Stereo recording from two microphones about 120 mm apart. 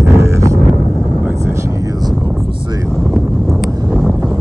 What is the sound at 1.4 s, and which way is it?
Vehicle, 25° right (ahead or behind).